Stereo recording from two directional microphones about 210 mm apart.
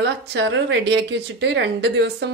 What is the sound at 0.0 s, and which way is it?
A woman's voice, 55° right (ahead or behind).